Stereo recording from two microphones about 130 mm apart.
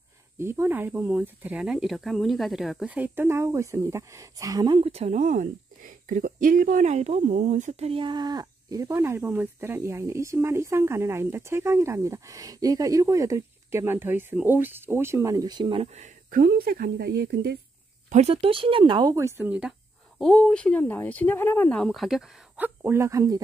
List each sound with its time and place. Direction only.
0.4 s speech: 20° right (ahead or behind); by 2.9 s centre (ahead or behind)
2.9 s speech: 15° right (ahead or behind)
4.7 s speech: 50° right (ahead or behind)
5.1 s speech: 80° right; by 15.9 s 40° right (ahead or behind)
15.9 s speech: 70° right (ahead or behind)
18.1 s speech: 50° right (ahead or behind)
19.1 s speech: 20° right (ahead or behind)
20.2 s speech: 5° left (ahead or behind)
22.8 s speech: 20° right (ahead or behind)